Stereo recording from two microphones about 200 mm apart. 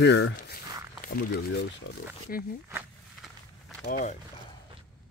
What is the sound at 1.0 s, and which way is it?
Speech, 50° left (ahead or behind).